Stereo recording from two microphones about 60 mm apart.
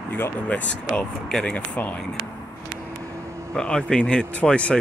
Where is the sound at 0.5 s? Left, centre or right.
Left.